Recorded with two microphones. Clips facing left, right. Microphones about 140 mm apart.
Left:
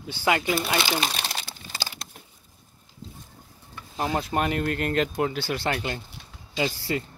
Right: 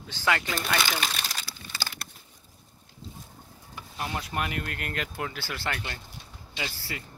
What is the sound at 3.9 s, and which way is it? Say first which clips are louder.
Speech: left 7 dB; 35° left (ahead or behind).